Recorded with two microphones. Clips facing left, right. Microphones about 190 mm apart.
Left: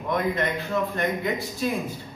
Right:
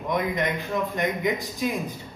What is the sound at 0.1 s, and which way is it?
Speech, 15° right (ahead or behind).